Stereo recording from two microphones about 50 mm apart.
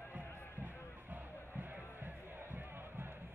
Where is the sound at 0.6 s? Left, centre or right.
Right.